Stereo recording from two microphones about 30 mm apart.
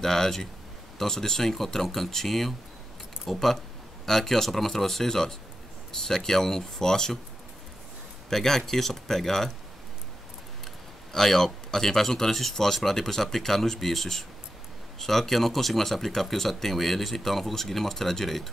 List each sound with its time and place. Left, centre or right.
0.0 s speech: centre
8.3 s speech: centre
11.1 s speech: centre